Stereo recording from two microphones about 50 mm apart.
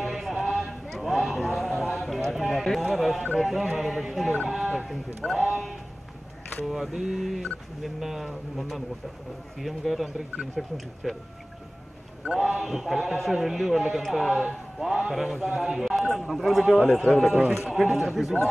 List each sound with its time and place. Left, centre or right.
0.0 s a sound: centre
1.7 s clip-clop: centre
2.8 s a man's voice: centre
6.6 s a man's voice: centre
12.3 s a man's voice: centre